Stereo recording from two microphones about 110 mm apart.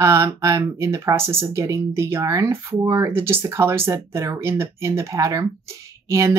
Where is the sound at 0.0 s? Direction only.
30° right (ahead or behind).